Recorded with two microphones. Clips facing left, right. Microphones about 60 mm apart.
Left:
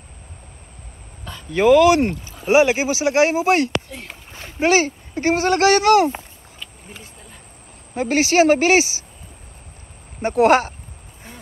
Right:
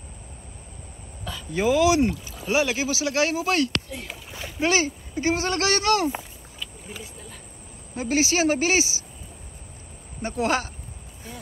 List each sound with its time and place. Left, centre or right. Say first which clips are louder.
1.5 s speech: left 7 dB; left
4.1 s splash: right 1 dB; centre
4.6 s speech: left 6 dB; left
4.8 s a woman's voice: left 4 dB; left
5.4 s speech: left 9 dB; left
6.1 s a sound: even; centre
7.9 s speech: left 6 dB; left
10.2 s speech: left 10 dB; left